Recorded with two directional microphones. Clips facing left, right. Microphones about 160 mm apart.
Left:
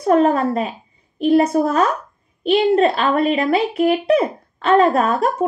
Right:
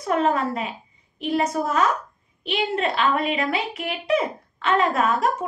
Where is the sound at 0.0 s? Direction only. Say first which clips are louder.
Left 7 dB; 35° left (ahead or behind).